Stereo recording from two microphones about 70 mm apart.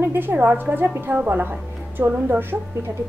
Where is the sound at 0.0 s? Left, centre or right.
Right.